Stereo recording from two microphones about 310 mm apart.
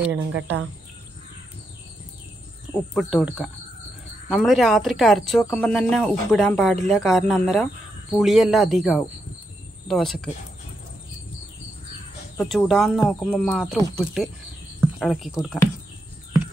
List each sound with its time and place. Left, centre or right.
0.3 s speech: right
2.9 s speech: centre
12.4 s speech: centre